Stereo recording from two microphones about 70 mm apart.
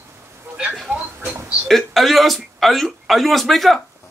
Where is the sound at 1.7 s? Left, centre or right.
Centre.